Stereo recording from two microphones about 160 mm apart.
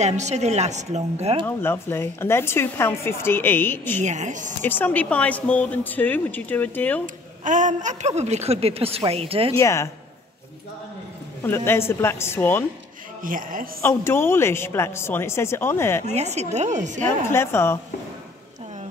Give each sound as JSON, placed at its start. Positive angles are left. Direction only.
{"t": 0.0, "sound": "a woman's voice", "side_deg": -45}
{"t": 1.4, "sound": "speech", "side_deg": 15}
{"t": 4.0, "sound": "a woman's voice", "side_deg": -45}
{"t": 4.6, "sound": "speech", "side_deg": 10}
{"t": 7.4, "sound": "a woman's voice", "side_deg": -50}
{"t": 9.6, "sound": "speech", "side_deg": 20}
{"t": 11.4, "sound": "speech", "side_deg": 15}
{"t": 13.2, "sound": "speech", "side_deg": -60}
{"t": 13.8, "sound": "speech", "side_deg": 15}
{"t": 16.1, "sound": "a woman's voice", "side_deg": -45}
{"t": 17.3, "sound": "speech", "side_deg": 15}